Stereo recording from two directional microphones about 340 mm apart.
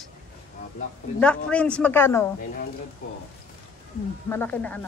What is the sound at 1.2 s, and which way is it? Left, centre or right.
A woman's voice, centre.